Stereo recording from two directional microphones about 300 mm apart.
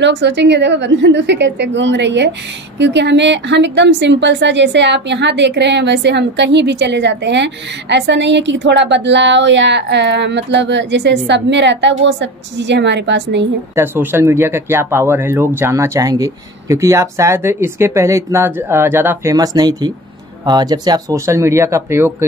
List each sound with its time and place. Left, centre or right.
0.0 s a woman's voice: right
13.7 s speech: centre